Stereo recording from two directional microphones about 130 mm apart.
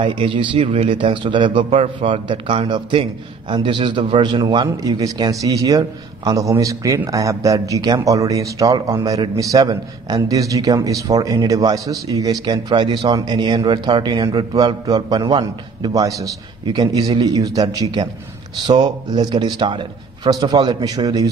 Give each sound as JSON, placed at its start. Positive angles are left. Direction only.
{"t": 0.0, "sound": "a man's voice", "side_deg": -40}